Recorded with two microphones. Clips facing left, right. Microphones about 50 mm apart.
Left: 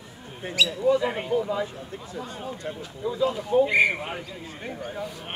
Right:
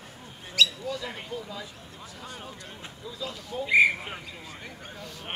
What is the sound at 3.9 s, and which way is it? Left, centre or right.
Speech, left.